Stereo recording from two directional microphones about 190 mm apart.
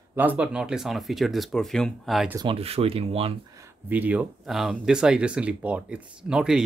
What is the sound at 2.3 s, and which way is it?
Speech, 30° right (ahead or behind).